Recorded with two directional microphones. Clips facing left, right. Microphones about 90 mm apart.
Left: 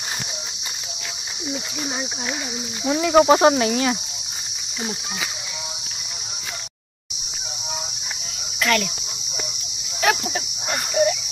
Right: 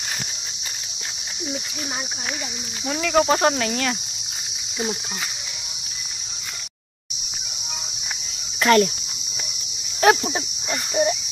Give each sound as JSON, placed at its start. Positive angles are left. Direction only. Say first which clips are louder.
{"t": 2.8, "sound": "speech", "louder": "left 4 dB", "side_deg": 20}
{"t": 8.5, "sound": "cricket", "louder": "right 5 dB", "side_deg": -30}
{"t": 11.0, "sound": "speech", "louder": "left 2 dB", "side_deg": -30}